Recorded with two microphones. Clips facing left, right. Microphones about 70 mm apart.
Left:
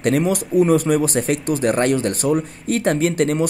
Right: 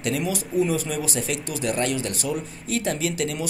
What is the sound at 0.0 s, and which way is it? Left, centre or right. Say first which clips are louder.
Speech: left 8 dB; left.